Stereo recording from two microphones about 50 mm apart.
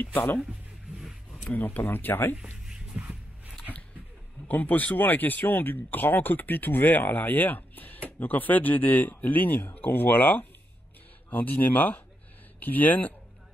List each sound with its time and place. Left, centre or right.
0.0 s speech: left
1.5 s speech: left
2.6 s music: centre
4.5 s speech: left